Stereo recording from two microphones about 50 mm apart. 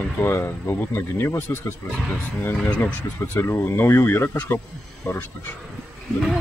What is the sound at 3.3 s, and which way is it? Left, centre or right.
Speech, left.